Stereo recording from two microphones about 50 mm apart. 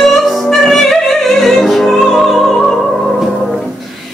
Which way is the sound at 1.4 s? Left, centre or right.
Centre.